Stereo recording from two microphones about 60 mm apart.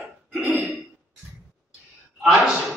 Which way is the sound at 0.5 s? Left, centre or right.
Centre.